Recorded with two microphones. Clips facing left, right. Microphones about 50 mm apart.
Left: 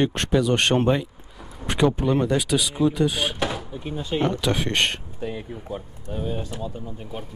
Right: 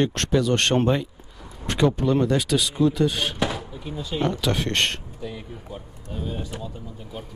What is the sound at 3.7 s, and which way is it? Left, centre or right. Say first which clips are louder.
Speech: left 3 dB; left.